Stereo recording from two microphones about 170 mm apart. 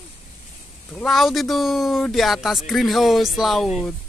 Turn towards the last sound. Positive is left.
turn(degrees=0)  # may be behind; listen again after turning